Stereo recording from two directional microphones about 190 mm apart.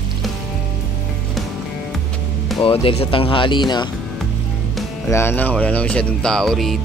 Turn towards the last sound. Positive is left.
turn(degrees=0)  # may be behind; listen again after turning